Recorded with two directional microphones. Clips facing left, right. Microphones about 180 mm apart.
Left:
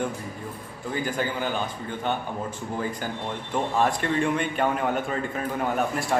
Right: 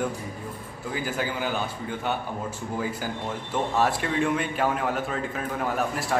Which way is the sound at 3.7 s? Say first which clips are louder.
Left 1 dB; 5° right (ahead or behind).